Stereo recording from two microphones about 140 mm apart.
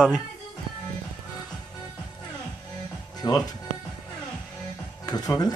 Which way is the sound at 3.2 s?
30° left (ahead or behind).